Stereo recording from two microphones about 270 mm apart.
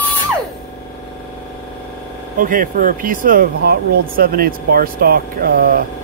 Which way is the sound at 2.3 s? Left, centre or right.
Right.